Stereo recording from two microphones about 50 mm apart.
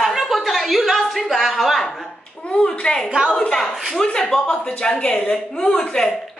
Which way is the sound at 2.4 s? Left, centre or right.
Centre.